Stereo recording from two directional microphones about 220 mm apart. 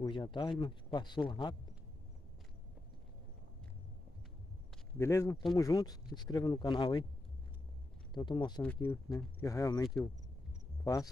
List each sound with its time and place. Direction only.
0.0 s speech: 20° left (ahead or behind)
4.9 s speech: 10° left (ahead or behind)
8.1 s speech: 20° left (ahead or behind)
10.8 s cricket: 15° left (ahead or behind)